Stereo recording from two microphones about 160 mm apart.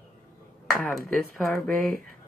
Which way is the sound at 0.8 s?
Centre (ahead or behind).